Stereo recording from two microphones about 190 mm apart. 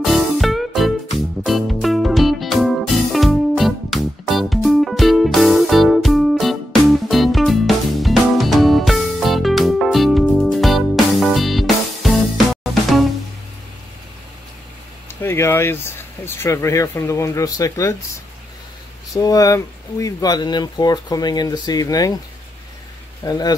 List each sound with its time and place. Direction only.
0.0 s music: centre (ahead or behind)
15.0 s speech: 15° left (ahead or behind)
19.1 s speech: 20° left (ahead or behind)
23.2 s speech: 20° left (ahead or behind)